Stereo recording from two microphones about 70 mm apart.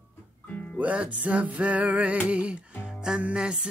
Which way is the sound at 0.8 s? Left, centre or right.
Centre.